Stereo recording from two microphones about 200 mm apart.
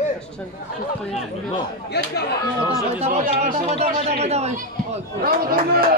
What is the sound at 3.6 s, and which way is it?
A man's voice, 30° right (ahead or behind).